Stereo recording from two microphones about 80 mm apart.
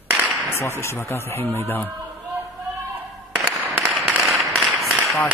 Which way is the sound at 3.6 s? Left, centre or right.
Right.